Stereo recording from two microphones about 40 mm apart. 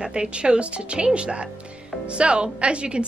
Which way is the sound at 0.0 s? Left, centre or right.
Right.